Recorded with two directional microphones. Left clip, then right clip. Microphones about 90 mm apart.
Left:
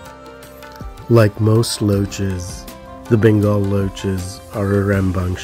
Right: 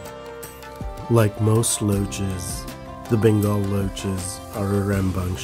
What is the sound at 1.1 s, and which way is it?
Speech, 25° left (ahead or behind).